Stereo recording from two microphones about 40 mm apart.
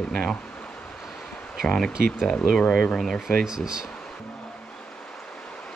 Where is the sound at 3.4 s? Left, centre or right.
Centre.